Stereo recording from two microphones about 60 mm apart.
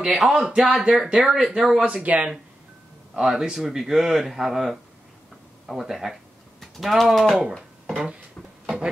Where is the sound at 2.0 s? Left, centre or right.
Right.